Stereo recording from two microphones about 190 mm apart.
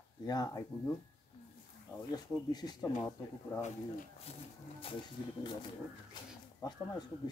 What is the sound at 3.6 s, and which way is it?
Speech, 40° left (ahead or behind).